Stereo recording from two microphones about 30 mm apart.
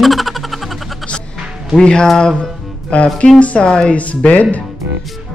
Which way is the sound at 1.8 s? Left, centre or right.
Left.